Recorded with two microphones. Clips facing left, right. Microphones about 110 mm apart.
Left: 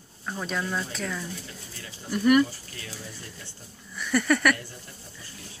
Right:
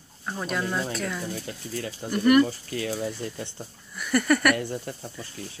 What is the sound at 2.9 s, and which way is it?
Speech, 55° right (ahead or behind).